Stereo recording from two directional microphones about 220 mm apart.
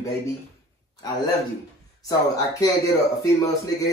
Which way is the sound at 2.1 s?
15° left (ahead or behind).